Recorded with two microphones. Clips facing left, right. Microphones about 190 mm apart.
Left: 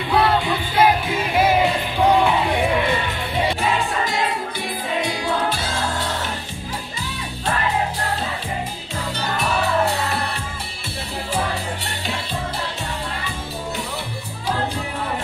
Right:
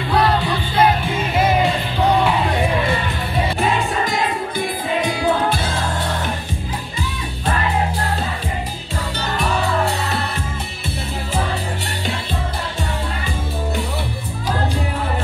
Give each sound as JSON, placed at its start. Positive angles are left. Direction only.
{"t": 0.2, "sound": "music", "side_deg": 10}
{"t": 5.5, "sound": "music", "side_deg": -55}